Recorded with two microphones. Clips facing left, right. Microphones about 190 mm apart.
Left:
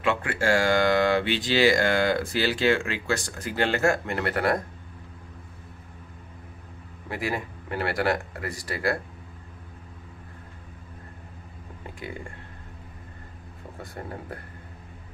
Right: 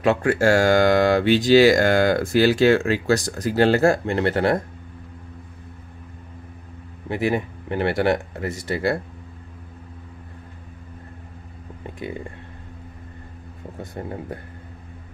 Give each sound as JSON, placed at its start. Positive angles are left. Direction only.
{"t": 0.0, "sound": "speech", "side_deg": -40}
{"t": 7.1, "sound": "speech", "side_deg": -25}
{"t": 13.9, "sound": "speech", "side_deg": -20}